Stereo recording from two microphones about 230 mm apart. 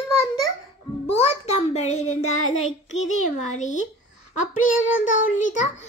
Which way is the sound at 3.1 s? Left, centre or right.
Left.